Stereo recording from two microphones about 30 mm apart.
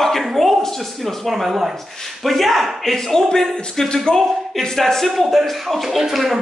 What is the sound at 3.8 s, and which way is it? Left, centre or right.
Music, left.